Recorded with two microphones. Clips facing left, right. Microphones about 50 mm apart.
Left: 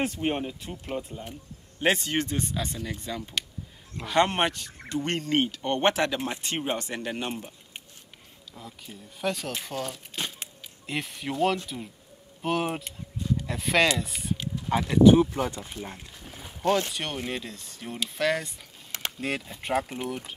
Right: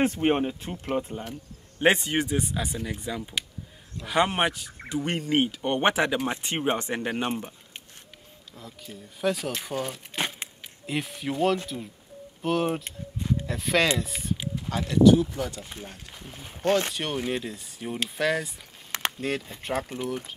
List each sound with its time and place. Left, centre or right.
0.0 s speech: right
1.8 s speech: centre
8.5 s speech: centre
12.8 s speech: right
13.5 s speech: centre
14.7 s speech: centre
16.3 s speech: centre